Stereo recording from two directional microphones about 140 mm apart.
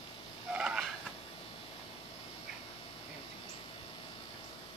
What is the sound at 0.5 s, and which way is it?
Cat, 5° right (ahead or behind).